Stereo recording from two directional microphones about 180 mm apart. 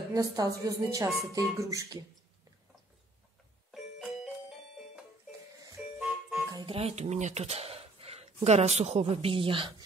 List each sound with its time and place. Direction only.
0.1 s speech: 20° right (ahead or behind)
5.9 s music: 5° right (ahead or behind)
6.5 s speech: 30° right (ahead or behind)